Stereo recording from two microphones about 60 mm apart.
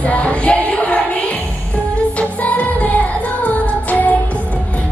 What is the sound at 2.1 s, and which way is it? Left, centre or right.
Music, left.